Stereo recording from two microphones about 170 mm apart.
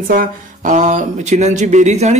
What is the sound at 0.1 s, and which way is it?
Speech, 55° right (ahead or behind).